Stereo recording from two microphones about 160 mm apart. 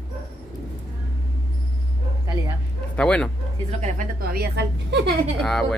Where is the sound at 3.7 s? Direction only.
45° right (ahead or behind).